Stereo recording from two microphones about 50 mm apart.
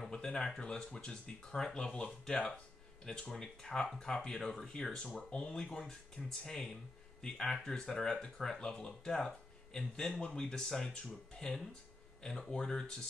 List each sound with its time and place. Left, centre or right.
0.1 s speech: centre
4.9 s speech: centre
5.7 s speech: centre